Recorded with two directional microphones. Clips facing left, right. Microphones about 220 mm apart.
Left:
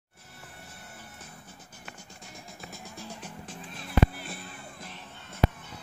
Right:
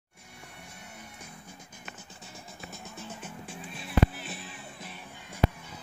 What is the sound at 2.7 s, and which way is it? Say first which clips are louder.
Music: even; centre (ahead or behind).